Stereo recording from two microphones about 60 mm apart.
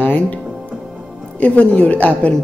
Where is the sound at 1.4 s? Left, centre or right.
Left.